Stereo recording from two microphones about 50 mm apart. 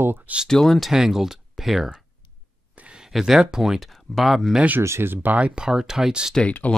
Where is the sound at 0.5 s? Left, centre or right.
Centre.